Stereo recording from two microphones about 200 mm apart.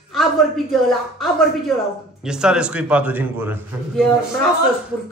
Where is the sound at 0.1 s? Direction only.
Centre (ahead or behind).